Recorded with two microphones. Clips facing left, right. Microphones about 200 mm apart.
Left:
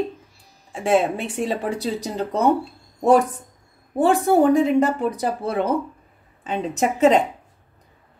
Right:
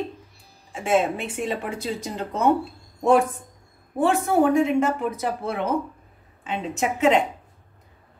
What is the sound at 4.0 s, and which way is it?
Speech, 35° left (ahead or behind).